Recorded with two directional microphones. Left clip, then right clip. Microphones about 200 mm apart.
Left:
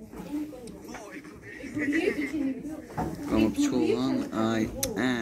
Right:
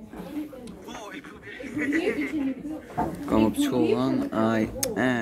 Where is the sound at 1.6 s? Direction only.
30° right (ahead or behind).